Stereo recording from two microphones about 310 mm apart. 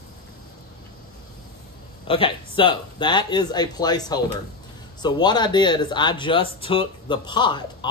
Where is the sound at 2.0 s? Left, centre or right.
Centre.